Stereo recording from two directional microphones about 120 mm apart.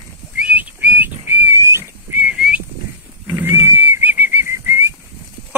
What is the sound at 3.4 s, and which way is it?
Whistle, 20° right (ahead or behind).